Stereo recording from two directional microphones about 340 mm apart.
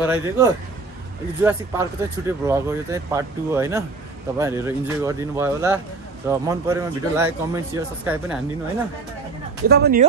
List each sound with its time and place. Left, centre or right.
0.0 s speech: centre
9.7 s speech: right